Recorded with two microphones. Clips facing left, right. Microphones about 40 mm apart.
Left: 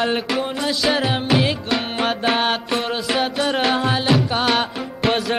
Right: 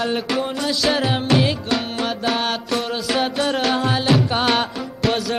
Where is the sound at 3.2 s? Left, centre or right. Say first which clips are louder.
Left 1 dB; centre.